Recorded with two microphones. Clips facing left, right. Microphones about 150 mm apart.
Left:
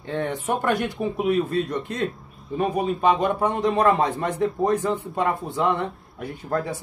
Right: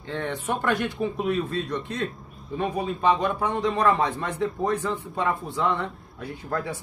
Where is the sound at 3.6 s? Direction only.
25° left (ahead or behind).